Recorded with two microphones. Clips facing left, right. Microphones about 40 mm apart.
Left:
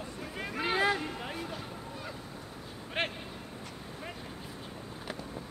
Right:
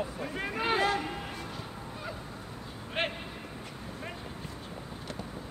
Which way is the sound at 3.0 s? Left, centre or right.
Centre.